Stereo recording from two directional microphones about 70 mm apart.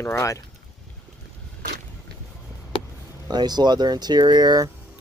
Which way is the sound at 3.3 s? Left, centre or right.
Right.